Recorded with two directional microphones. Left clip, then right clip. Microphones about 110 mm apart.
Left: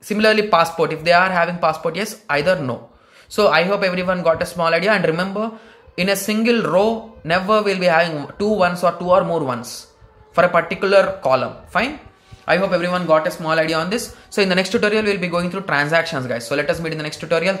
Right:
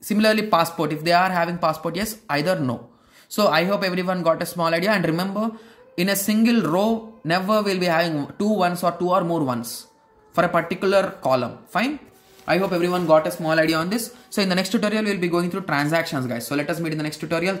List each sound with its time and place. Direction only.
0.1 s speech: 35° right (ahead or behind)